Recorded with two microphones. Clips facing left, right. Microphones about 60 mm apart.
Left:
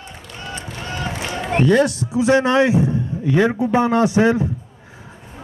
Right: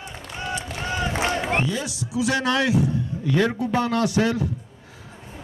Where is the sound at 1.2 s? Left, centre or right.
Right.